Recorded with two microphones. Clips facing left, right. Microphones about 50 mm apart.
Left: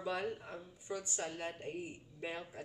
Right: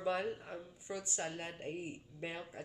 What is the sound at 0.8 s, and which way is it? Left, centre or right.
Speech, right.